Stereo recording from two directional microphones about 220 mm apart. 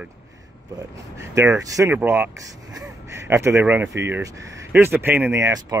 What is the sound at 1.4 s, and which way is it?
Speech, 15° right (ahead or behind).